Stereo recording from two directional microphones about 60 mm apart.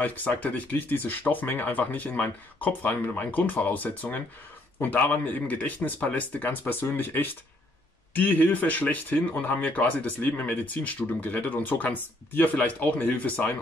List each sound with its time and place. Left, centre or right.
0.0 s speech: left